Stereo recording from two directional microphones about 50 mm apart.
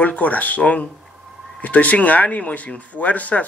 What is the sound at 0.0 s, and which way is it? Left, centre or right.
Speech, left.